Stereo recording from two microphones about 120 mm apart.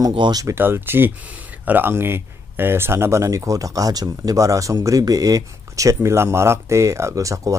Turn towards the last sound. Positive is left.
turn(degrees=-25)  # may be behind; listen again after turning